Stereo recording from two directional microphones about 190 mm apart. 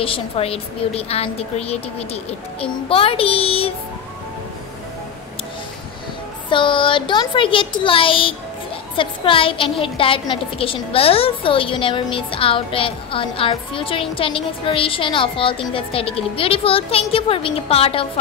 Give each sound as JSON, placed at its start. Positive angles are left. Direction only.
{"t": 0.0, "sound": "a woman's voice", "side_deg": 30}
{"t": 6.5, "sound": "a woman's voice", "side_deg": 25}